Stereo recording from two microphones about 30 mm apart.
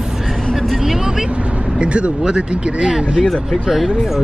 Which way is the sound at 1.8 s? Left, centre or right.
Right.